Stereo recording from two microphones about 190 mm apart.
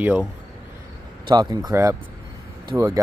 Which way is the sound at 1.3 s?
20° right (ahead or behind).